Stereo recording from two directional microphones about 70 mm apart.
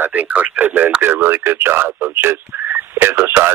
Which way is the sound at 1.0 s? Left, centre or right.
Right.